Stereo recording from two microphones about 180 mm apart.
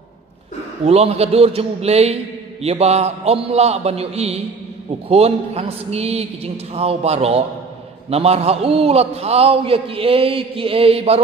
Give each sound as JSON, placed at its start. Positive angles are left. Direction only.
{"t": 0.8, "sound": "a man's voice", "side_deg": -35}